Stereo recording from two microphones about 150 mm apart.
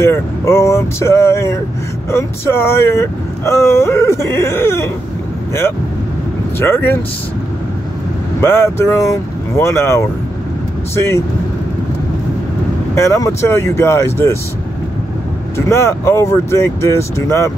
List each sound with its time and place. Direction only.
0.0 s speech: 15° left (ahead or behind)
6.6 s speech: 15° left (ahead or behind)
8.4 s speech: 15° left (ahead or behind)
12.9 s speech: 20° left (ahead or behind)
15.5 s speech: 20° left (ahead or behind)